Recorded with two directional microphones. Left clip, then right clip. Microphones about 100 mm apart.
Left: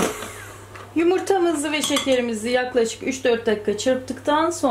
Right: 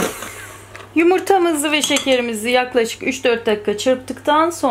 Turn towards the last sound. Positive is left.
turn(degrees=-25)  # may be behind; listen again after turning